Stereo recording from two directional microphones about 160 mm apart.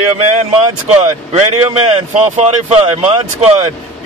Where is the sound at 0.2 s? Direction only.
40° right (ahead or behind).